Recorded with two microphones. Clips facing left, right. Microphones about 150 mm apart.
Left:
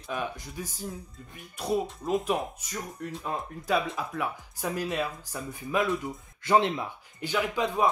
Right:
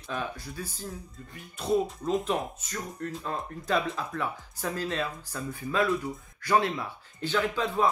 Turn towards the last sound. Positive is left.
turn(degrees=15)  # may be behind; listen again after turning